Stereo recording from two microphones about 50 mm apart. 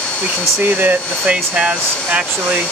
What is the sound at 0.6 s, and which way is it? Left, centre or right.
Speech, right.